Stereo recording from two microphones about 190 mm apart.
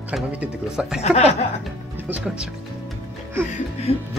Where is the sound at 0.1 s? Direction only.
5° right (ahead or behind).